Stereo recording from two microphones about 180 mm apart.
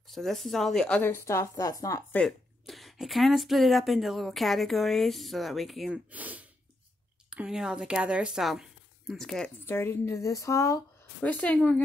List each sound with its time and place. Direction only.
0.1 s a woman's voice: centre (ahead or behind); by 2.0 s 20° left (ahead or behind)
2.1 s speech: centre (ahead or behind)
9.7 s a woman's voice: 15° left (ahead or behind)